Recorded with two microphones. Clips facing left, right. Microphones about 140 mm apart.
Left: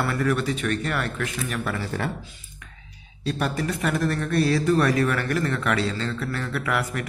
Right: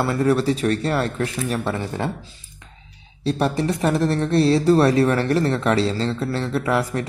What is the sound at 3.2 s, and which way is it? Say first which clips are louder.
Speech: right 5 dB; 30° right (ahead or behind).